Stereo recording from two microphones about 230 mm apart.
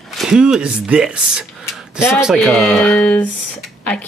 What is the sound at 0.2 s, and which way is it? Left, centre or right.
A woman's voice, centre.